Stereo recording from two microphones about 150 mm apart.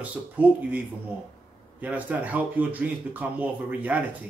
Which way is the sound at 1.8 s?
10° right (ahead or behind).